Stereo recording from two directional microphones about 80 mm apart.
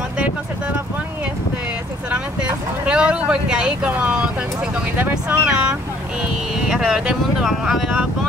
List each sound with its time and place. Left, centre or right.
2.0 s speech: centre